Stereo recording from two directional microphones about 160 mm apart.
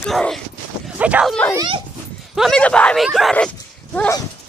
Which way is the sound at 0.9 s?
10° right (ahead or behind).